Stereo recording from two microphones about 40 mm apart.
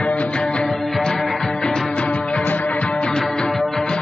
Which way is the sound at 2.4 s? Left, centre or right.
Left.